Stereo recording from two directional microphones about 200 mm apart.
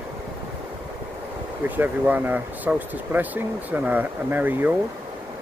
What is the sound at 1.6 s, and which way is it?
Speech, 10° right (ahead or behind).